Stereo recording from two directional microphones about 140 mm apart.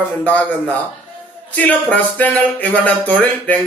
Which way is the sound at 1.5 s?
10° left (ahead or behind).